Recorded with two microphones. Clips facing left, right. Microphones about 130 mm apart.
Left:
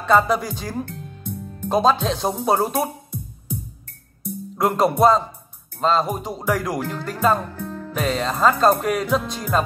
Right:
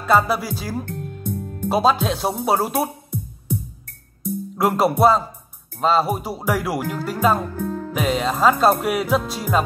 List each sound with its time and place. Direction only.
0.0 s music: 5° right (ahead or behind)
0.8 s music: 50° right (ahead or behind)
1.7 s speech: 5° right (ahead or behind)
3.1 s music: 70° right (ahead or behind)
4.6 s speech: 5° right (ahead or behind)
5.8 s music: 5° right (ahead or behind)
7.5 s music: 50° right (ahead or behind)
7.9 s music: 10° right (ahead or behind)